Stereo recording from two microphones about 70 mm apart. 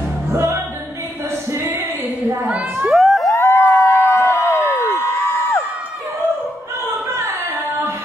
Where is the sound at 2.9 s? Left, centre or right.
Centre.